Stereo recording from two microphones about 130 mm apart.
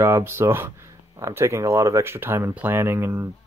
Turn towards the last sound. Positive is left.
turn(degrees=-20)  # may be behind; listen again after turning